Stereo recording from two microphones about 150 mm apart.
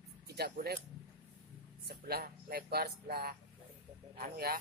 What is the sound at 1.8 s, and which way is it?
Speech, 90° right.